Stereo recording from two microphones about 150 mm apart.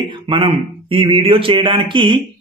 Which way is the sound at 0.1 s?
35° right (ahead or behind).